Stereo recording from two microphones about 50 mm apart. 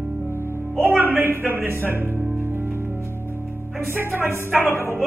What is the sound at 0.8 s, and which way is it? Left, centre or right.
Speech, right.